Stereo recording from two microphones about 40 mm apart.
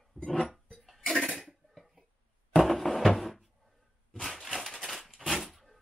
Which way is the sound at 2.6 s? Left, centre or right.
Centre.